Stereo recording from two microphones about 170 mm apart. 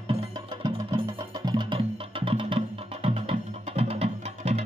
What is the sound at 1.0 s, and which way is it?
Music, 25° right (ahead or behind).